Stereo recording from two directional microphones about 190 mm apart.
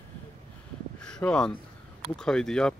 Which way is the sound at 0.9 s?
5° left (ahead or behind).